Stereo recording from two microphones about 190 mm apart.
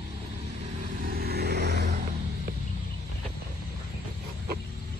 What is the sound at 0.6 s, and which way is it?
Vehicle, 50° right (ahead or behind).